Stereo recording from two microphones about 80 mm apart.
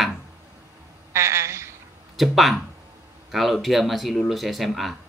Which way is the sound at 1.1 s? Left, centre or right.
Right.